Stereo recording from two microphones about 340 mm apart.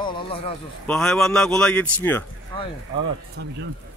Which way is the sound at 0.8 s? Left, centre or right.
Centre.